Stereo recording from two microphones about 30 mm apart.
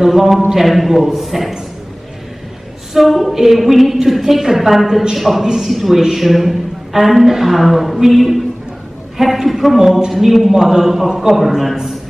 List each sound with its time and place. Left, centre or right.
0.0 s a man's voice: centre
2.9 s a woman's voice: centre
5.4 s a man's voice: centre
5.7 s a woman's voice: centre
10.5 s a man's voice: centre